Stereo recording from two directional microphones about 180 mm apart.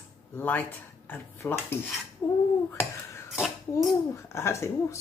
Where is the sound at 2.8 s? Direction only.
5° right (ahead or behind).